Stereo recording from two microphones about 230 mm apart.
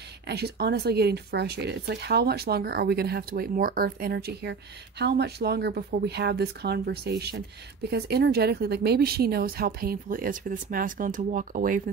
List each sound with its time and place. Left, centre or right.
0.3 s speech: right